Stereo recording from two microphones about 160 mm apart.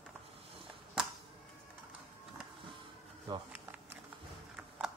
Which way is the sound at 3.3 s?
25° right (ahead or behind).